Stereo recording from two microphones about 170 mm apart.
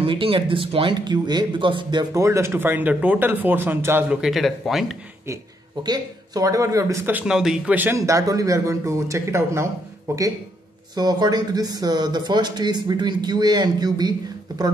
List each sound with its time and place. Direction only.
0.0 s speech: 30° right (ahead or behind); by 4.9 s centre (ahead or behind)
5.9 s speech: 25° right (ahead or behind)